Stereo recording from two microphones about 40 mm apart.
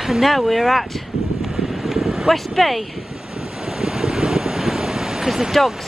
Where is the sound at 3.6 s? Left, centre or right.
Centre.